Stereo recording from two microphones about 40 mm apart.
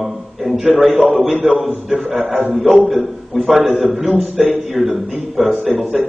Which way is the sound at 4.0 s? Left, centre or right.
Right.